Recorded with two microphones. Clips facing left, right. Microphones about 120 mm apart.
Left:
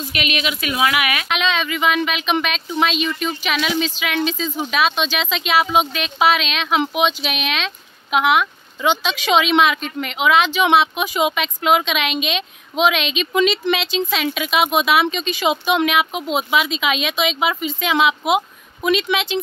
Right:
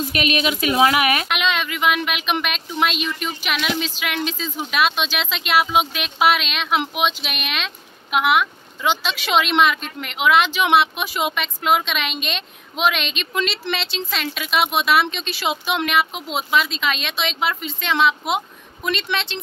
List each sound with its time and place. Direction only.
0.1 s a woman's voice: 35° right (ahead or behind)
1.3 s speech: 5° right (ahead or behind)